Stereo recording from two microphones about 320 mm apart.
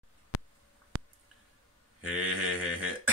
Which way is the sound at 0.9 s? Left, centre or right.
Right.